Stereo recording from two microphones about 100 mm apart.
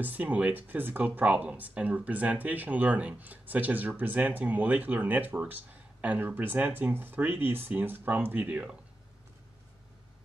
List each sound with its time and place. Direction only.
0.0 s speech: 15° right (ahead or behind)